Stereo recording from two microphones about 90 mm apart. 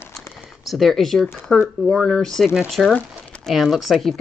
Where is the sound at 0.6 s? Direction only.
Centre (ahead or behind).